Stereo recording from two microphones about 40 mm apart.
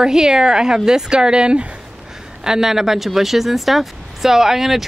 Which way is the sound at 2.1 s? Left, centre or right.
Centre.